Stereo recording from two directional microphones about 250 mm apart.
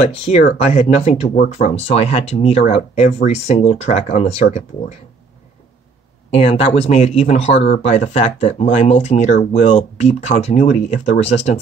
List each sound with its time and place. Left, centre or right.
0.0 s speech: left
6.3 s speech: left